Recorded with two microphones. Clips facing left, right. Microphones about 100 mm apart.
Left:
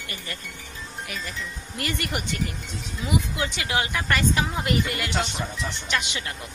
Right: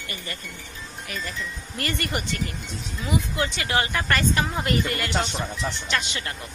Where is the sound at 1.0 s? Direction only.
5° left (ahead or behind).